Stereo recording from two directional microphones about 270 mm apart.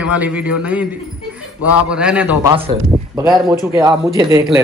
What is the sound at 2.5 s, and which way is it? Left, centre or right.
A man's voice, right.